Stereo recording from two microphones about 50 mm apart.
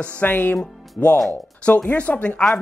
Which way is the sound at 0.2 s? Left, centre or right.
Left.